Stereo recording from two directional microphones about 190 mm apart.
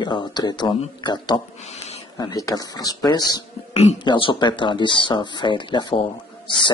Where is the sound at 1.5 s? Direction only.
35° left (ahead or behind).